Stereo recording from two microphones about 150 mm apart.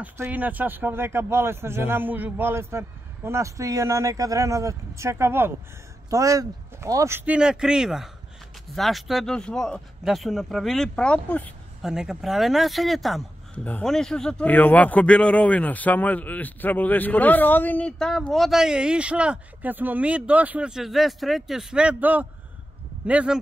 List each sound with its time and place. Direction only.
0.0 s speech: 10° right (ahead or behind); by 11.5 s 10° left (ahead or behind)
11.8 s speech: 5° right (ahead or behind)